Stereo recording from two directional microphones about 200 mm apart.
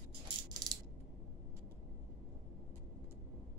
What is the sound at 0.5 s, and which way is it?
Mechanisms, 20° right (ahead or behind).